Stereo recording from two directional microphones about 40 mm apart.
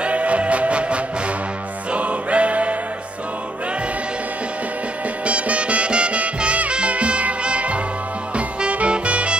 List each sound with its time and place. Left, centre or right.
0.0 s music: right
5.2 s music: right